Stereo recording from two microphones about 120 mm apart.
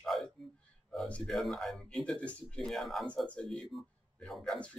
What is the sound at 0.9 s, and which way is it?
Speech, 5° left (ahead or behind).